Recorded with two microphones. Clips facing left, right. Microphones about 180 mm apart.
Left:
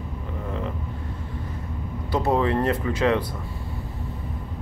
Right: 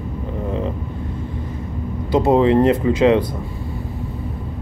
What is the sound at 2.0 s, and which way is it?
Speech, 20° right (ahead or behind).